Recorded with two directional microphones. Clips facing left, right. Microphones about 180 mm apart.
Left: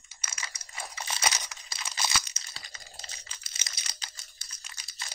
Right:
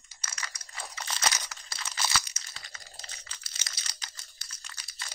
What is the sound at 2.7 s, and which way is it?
Computer keyboard, 25° left (ahead or behind).